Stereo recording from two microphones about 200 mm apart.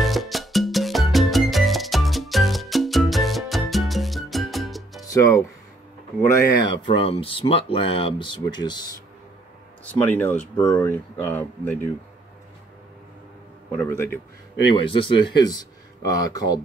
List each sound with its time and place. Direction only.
0.0 s music: centre (ahead or behind)
6.2 s speech: 25° left (ahead or behind)
9.9 s speech: 10° left (ahead or behind)
13.7 s speech: 10° left (ahead or behind)
14.7 s speech: 25° left (ahead or behind)